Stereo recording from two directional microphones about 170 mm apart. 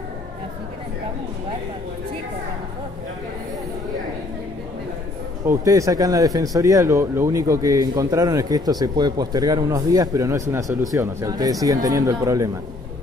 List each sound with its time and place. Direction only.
5.4 s a man's voice: 20° right (ahead or behind)